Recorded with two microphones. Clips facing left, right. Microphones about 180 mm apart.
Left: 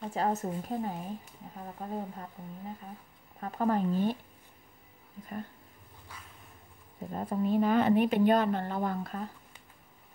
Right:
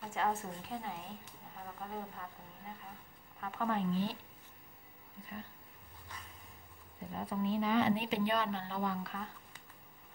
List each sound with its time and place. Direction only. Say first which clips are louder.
0.1 s a woman's voice: left 5 dB; 40° left (ahead or behind)
3.3 s a woman's voice: left 7 dB; 40° left (ahead or behind)
7.1 s speech: left 6 dB; 45° left (ahead or behind)